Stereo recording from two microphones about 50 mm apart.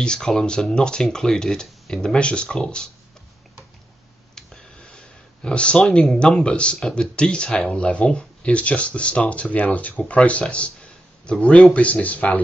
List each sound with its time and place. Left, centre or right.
0.0 s speech: centre
4.7 s a sound: centre
6.1 s speech: centre